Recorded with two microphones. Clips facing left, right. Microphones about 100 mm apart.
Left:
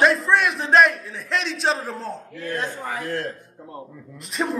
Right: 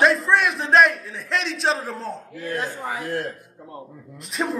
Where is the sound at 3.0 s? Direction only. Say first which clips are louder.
Even; 25° right (ahead or behind).